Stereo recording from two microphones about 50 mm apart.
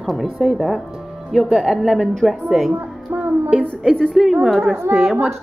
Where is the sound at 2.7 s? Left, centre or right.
Right.